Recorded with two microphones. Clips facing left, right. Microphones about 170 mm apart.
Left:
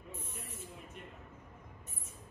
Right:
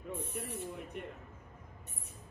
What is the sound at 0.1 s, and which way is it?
Speech, 65° right (ahead or behind).